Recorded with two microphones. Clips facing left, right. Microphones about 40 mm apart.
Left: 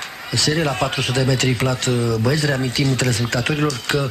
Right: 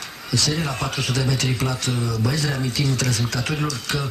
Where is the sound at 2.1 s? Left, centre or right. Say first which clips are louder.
Left 5 dB; left.